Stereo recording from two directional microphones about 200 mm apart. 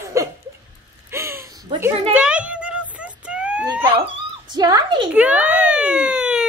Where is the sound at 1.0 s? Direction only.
15° right (ahead or behind).